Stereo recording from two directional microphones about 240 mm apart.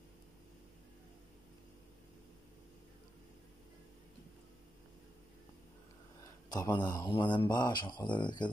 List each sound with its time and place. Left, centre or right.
6.5 s speech: centre